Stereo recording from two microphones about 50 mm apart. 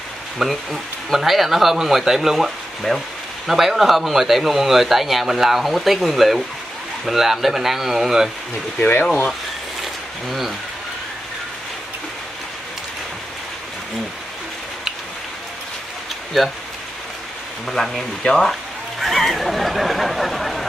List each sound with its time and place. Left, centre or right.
0.4 s speech: centre
10.2 s speech: centre
16.3 s speech: centre
17.6 s speech: centre
18.2 s speech: centre
18.5 s speech: centre